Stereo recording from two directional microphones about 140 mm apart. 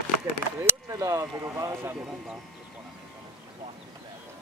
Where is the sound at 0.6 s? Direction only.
20° right (ahead or behind).